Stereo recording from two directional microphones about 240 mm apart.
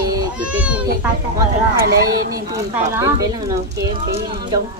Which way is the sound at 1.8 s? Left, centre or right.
Right.